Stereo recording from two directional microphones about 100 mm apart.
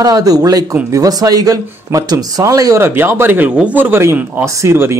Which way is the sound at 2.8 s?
25° right (ahead or behind).